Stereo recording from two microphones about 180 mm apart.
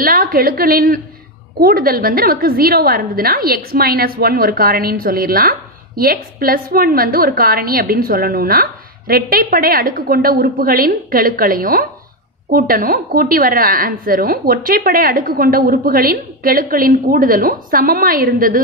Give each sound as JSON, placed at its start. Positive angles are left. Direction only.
{"t": 0.0, "sound": "a woman's voice", "side_deg": -55}